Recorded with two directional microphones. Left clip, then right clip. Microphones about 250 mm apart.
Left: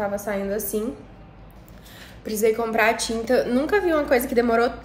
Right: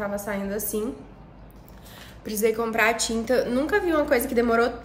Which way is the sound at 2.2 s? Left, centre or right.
Centre.